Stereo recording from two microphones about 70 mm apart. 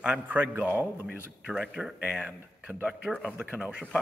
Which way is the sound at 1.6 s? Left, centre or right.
Centre.